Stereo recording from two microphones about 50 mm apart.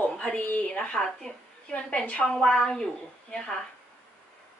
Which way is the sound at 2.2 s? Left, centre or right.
Centre.